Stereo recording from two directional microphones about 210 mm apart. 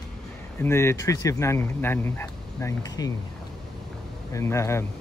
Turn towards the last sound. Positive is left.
turn(degrees=15)  # may be behind; listen again after turning